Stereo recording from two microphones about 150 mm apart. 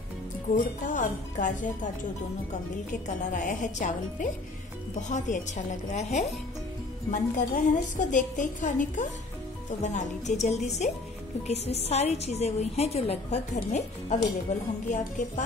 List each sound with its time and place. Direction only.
0.8 s a woman's voice: 60° left (ahead or behind)
2.9 s a woman's voice: 60° left (ahead or behind)